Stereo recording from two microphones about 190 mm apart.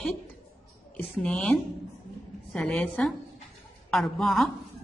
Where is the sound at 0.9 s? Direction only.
5° left (ahead or behind).